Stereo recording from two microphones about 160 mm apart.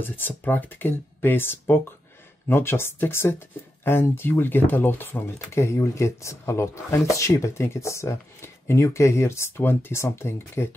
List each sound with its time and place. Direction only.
0.0 s speech: 10° left (ahead or behind)